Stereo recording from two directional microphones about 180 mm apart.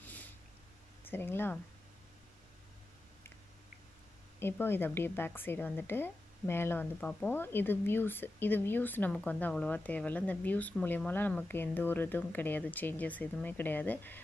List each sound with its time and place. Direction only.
0.0 s a sound: 10° left (ahead or behind)
1.0 s speech: 10° left (ahead or behind)
4.4 s a woman's voice: 15° left (ahead or behind)